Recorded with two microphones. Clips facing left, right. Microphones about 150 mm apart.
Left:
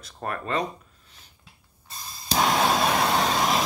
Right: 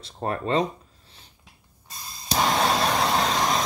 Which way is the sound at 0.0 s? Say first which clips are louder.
Right 4 dB; 25° right (ahead or behind).